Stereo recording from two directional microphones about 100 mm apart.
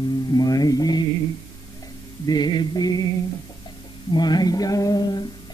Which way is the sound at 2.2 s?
45° left (ahead or behind).